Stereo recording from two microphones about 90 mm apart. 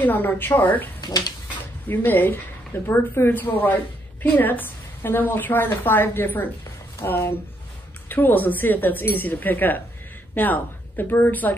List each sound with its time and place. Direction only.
0.0 s a woman's voice: 20° left (ahead or behind)
1.0 s speech: 50° left (ahead or behind)
1.9 s a woman's voice: 20° left (ahead or behind)